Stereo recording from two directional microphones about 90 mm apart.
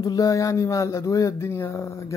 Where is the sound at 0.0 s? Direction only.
45° left (ahead or behind).